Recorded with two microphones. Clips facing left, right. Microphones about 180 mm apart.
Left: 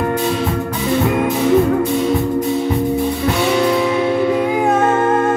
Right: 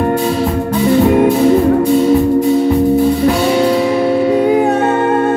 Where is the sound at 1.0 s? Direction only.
35° right (ahead or behind).